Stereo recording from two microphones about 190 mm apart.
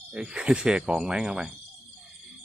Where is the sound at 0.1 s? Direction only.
5° right (ahead or behind).